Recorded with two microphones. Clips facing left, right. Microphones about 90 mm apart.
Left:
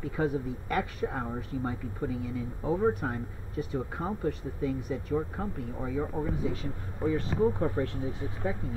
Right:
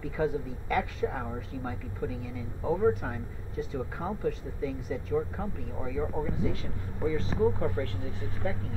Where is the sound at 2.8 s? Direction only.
20° left (ahead or behind).